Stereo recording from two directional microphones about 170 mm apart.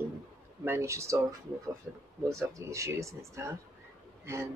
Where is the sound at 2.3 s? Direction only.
20° right (ahead or behind).